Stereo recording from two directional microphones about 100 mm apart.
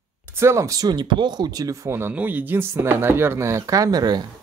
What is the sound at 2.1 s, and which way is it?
Speech, 15° right (ahead or behind).